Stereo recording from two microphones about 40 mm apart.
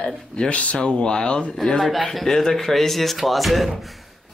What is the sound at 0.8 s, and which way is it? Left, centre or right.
Speech, left.